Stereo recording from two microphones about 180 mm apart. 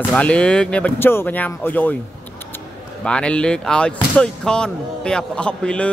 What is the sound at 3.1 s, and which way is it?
Speech, 5° left (ahead or behind).